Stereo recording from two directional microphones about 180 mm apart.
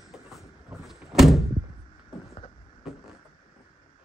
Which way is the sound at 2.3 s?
35° left (ahead or behind).